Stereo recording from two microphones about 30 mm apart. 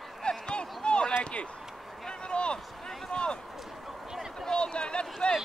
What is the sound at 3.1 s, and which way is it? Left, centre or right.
Run, left.